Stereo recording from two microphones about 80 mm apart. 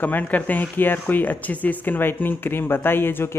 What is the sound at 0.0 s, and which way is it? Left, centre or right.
Speech, left.